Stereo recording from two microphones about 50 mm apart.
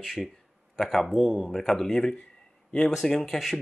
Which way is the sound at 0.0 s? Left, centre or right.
Centre.